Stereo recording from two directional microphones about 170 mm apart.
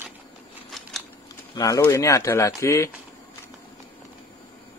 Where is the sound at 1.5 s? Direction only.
20° left (ahead or behind).